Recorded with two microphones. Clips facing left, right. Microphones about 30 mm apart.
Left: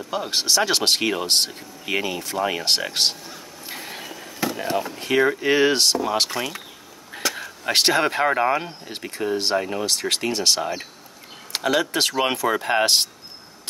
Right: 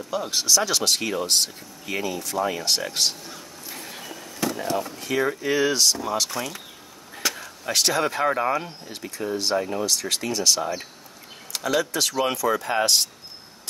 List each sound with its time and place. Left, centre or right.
0.3 s speech: left
3.6 s a sound: left
4.6 s speech: left
5.0 s speech: left
6.3 s speech: left
7.2 s a sound: centre
7.6 s speech: left
9.8 s speech: left
10.6 s speech: left
11.5 s speech: left